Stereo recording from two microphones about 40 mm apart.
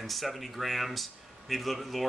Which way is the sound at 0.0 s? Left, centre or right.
Centre.